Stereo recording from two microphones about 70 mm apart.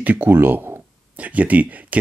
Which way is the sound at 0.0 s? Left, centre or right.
Right.